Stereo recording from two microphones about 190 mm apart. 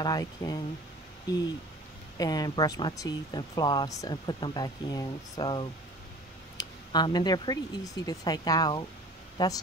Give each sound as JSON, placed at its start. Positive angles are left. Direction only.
{"t": 0.0, "sound": "speech", "side_deg": 20}
{"t": 2.1, "sound": "speech", "side_deg": 20}